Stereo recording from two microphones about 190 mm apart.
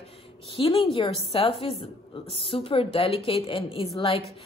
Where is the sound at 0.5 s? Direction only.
30° left (ahead or behind).